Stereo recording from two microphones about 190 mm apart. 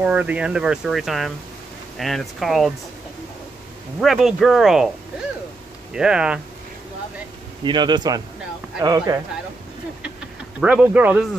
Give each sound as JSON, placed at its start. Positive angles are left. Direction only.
{"t": 0.0, "sound": "speech", "side_deg": -5}
{"t": 4.0, "sound": "speech", "side_deg": 0}
{"t": 5.9, "sound": "speech", "side_deg": -5}
{"t": 7.6, "sound": "speech", "side_deg": -25}
{"t": 10.6, "sound": "speech", "side_deg": -5}